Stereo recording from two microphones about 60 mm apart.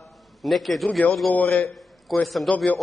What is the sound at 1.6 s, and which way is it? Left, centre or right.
Speech, centre.